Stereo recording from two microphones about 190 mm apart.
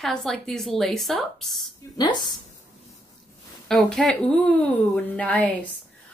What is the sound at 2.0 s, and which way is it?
Speech, 20° left (ahead or behind).